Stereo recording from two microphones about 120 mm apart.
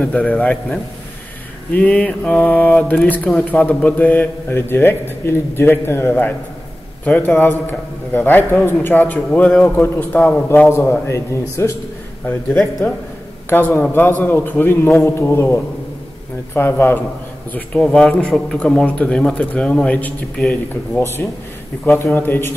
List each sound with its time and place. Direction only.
0.0 s a man's voice: 15° left (ahead or behind)
13.5 s a man's voice: 15° left (ahead or behind)
21.0 s a man's voice: 20° left (ahead or behind)